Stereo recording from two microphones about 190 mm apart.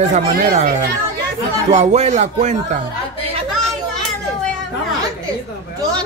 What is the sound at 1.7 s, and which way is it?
Speech, 35° right (ahead or behind).